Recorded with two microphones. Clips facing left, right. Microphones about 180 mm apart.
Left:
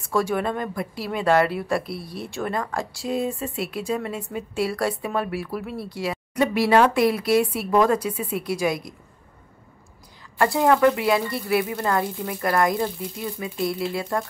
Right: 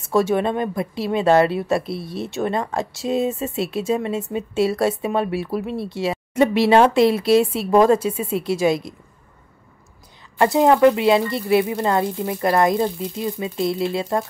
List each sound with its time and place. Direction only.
0.0 s speech: 25° right (ahead or behind)
10.4 s speech: 20° right (ahead or behind)